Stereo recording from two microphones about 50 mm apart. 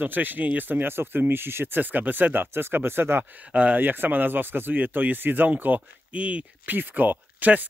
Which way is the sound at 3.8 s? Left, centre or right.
Right.